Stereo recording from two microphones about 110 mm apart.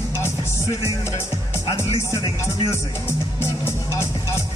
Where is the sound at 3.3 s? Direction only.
25° left (ahead or behind).